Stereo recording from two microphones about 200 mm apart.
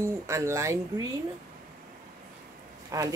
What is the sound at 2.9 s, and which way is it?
Speech, 20° right (ahead or behind).